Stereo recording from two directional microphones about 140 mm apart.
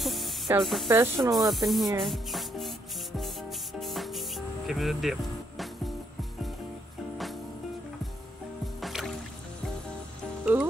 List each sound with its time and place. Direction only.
0.0 s spray: centre (ahead or behind)
0.5 s speech: 15° right (ahead or behind)
1.4 s speech: centre (ahead or behind)
2.0 s rub: centre (ahead or behind)
3.2 s spray: centre (ahead or behind)
8.8 s music: centre (ahead or behind)
10.4 s music: 10° right (ahead or behind)